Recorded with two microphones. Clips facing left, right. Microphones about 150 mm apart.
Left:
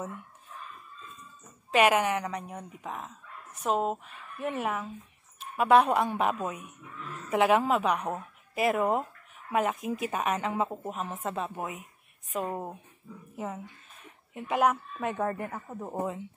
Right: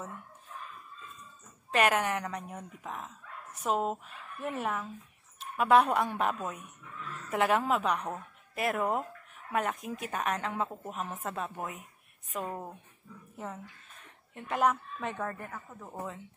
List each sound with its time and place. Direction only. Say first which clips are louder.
1.7 s a woman's voice: left 4 dB; 5° left (ahead or behind)
12.4 s a woman's voice: left 4 dB; 15° left (ahead or behind)
15.5 s a man's voice: left 7 dB; 30° left (ahead or behind)